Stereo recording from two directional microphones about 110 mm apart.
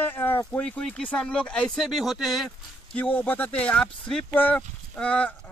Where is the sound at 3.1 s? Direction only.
15° left (ahead or behind).